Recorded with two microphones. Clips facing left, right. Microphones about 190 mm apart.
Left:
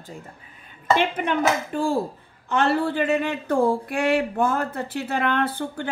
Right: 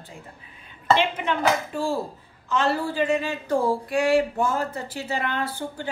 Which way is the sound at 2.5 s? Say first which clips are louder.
Left 3 dB; 55° left (ahead or behind).